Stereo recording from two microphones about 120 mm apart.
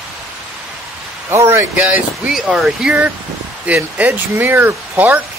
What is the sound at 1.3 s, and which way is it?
Speech, 20° right (ahead or behind).